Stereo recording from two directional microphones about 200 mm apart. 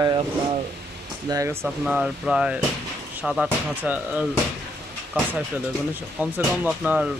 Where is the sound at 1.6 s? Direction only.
5° right (ahead or behind).